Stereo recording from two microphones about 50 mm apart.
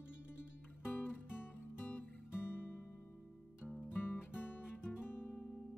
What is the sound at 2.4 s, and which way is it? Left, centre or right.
Music, left.